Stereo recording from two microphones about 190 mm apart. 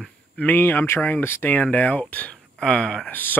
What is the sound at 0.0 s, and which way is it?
Speech, 10° left (ahead or behind).